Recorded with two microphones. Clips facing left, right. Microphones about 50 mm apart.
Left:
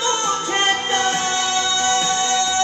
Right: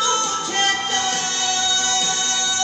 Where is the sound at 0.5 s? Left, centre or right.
Left.